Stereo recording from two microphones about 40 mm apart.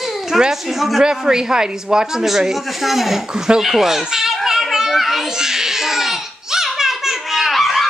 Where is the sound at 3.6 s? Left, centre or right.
Centre.